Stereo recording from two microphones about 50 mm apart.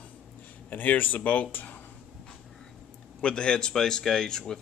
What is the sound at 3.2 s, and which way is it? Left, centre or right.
Speech, centre.